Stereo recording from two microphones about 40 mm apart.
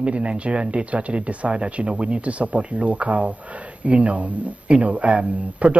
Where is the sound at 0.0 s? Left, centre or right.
Right.